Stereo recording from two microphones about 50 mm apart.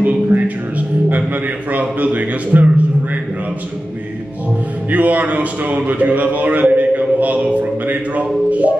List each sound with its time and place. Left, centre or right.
0.0 s music: right
4.9 s a man's voice: right
5.9 s a sound: right
8.5 s a man's voice: right